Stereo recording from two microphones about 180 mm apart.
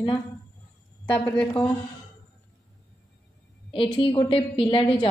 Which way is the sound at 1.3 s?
5° left (ahead or behind).